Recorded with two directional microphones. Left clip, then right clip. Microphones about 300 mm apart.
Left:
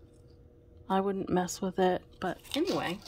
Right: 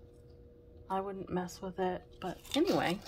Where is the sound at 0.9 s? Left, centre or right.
Left.